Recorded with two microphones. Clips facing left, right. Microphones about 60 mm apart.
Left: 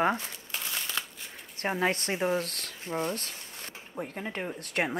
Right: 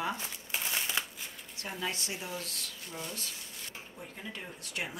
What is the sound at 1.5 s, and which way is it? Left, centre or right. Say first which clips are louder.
Speech: left 9 dB; left.